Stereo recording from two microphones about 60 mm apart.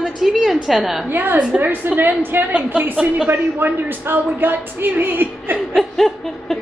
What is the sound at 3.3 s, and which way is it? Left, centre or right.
A woman's voice, right.